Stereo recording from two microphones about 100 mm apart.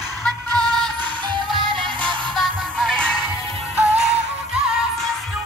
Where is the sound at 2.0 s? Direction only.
10° left (ahead or behind).